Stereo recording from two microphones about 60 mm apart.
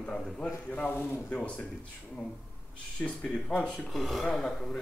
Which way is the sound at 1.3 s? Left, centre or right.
Left.